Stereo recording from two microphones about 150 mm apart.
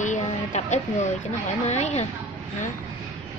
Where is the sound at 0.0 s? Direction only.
55° left (ahead or behind).